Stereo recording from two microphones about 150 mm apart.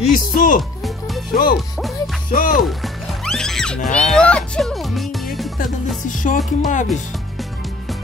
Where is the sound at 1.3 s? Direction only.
70° left (ahead or behind).